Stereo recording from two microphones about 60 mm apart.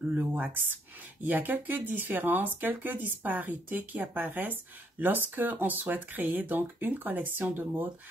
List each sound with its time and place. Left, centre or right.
0.4 s speech: right